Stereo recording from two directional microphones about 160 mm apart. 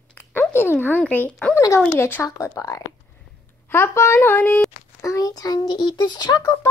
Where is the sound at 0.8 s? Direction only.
10° left (ahead or behind).